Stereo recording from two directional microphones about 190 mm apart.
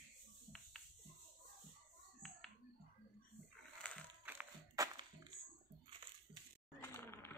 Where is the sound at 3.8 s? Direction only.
5° left (ahead or behind).